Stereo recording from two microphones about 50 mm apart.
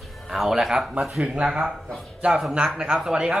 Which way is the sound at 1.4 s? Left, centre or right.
Centre.